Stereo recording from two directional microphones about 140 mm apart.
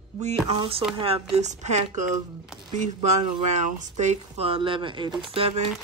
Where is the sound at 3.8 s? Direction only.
55° right (ahead or behind); by 5.5 s 40° right (ahead or behind).